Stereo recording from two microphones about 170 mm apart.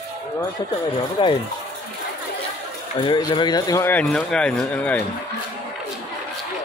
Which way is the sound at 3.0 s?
25° left (ahead or behind).